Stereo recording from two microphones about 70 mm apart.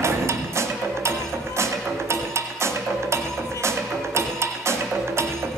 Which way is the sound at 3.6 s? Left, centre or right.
Right.